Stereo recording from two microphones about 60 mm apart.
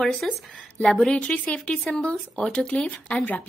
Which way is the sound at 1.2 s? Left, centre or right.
Left.